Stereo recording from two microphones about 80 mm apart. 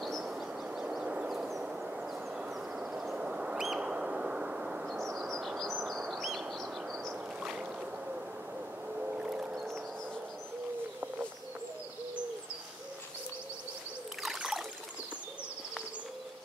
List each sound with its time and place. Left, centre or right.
0.0 s bird: centre
1.3 s a sound: centre
3.6 s bird: centre
5.1 s bird: centre
6.6 s a sound: centre
8.9 s whale vocalization: centre
14.2 s trickle: centre